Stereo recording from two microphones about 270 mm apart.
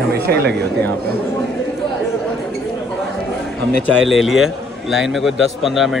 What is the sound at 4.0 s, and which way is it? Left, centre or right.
A man's voice, centre.